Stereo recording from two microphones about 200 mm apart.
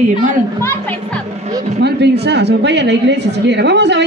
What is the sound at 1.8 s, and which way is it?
A woman's voice, 55° right (ahead or behind).